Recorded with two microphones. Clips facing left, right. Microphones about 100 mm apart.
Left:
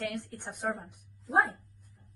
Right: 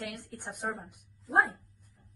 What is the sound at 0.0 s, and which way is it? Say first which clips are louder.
A woman's voice: left 4 dB; centre (ahead or behind).